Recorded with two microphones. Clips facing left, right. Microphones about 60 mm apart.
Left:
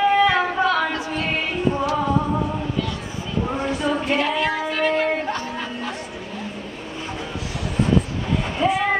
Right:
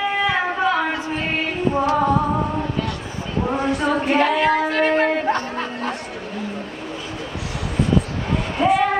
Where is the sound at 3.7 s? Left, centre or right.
Right.